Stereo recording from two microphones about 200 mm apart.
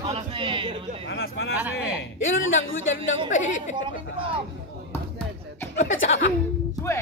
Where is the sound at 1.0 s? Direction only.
55° left (ahead or behind).